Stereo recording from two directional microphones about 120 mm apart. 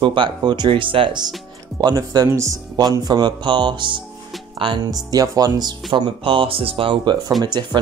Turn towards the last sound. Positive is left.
turn(degrees=-40)  # may be behind; listen again after turning